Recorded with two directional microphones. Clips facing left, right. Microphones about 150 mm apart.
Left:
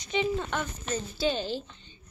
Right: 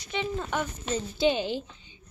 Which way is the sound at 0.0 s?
20° left (ahead or behind).